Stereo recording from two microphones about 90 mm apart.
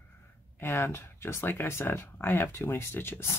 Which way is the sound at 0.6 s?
30° left (ahead or behind).